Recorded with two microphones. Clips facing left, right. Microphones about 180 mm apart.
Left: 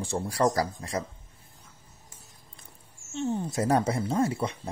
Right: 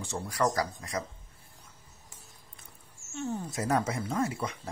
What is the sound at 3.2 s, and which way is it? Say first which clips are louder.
Speech: left 5 dB; 25° left (ahead or behind).